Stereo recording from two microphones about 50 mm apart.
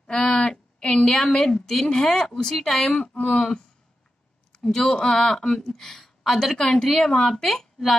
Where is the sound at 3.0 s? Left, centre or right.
Left.